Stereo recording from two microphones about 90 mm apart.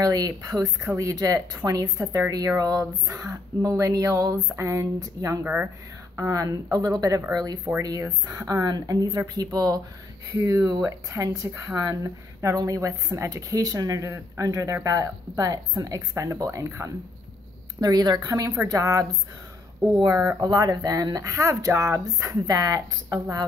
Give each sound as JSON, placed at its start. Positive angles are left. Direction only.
{"t": 0.0, "sound": "a woman's voice", "side_deg": -40}
{"t": 5.4, "sound": "speech", "side_deg": -15}
{"t": 6.1, "sound": "a woman's voice", "side_deg": -35}
{"t": 10.3, "sound": "a woman's voice", "side_deg": -35}
{"t": 17.7, "sound": "a woman's voice", "side_deg": -45}
{"t": 20.1, "sound": "speech", "side_deg": -25}
{"t": 20.3, "sound": "a woman's voice", "side_deg": -45}